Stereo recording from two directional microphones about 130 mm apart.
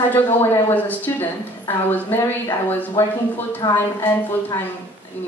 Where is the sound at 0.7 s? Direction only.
15° left (ahead or behind); by 3.8 s 30° left (ahead or behind).